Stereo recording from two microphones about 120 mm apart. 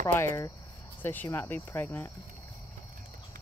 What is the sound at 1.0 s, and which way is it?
Speech, 15° left (ahead or behind).